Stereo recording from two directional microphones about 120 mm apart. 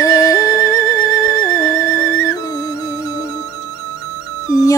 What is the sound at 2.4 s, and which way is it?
Music, 25° left (ahead or behind).